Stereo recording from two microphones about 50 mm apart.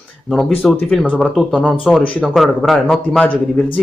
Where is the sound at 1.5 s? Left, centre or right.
Centre.